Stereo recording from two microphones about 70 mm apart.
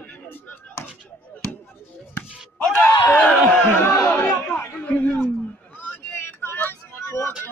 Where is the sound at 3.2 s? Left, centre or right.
Centre.